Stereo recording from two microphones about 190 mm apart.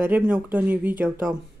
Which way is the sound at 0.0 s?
10° right (ahead or behind).